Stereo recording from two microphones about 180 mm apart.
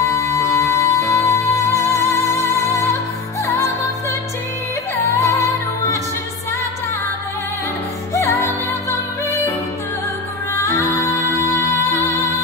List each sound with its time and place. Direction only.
0.0 s music: 15° left (ahead or behind)
5.1 s music: 15° left (ahead or behind)
8.1 s music: 15° left (ahead or behind)
10.5 s music: 20° left (ahead or behind)